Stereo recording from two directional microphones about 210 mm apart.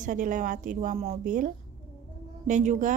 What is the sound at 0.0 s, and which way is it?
Speech, 40° right (ahead or behind).